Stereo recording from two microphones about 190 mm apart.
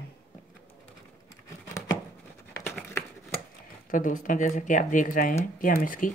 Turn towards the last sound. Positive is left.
turn(degrees=45)  # may be behind; listen again after turning